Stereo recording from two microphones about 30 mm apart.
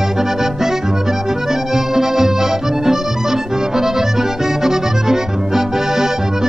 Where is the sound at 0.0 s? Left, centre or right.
Centre.